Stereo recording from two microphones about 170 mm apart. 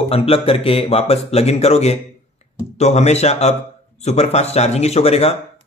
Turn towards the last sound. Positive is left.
turn(degrees=35)  # may be behind; listen again after turning